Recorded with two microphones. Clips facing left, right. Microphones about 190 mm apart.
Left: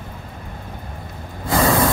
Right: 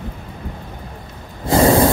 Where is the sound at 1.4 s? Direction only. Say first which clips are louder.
Right 5 dB; 30° right (ahead or behind).